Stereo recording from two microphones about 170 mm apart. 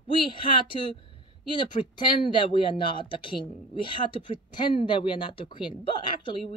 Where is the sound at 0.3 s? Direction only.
30° left (ahead or behind).